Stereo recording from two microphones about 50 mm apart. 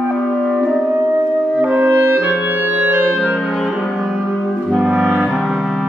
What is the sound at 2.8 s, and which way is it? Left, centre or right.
Music, right.